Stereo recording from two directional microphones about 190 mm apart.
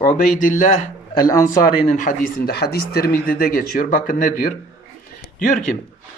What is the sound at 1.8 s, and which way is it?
A man's voice, 45° left (ahead or behind).